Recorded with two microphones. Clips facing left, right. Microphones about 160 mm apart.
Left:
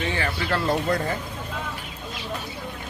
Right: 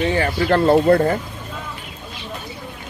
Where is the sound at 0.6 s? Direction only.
55° right (ahead or behind).